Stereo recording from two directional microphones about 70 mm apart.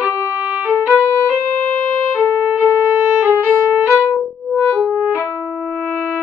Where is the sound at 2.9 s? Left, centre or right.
Right.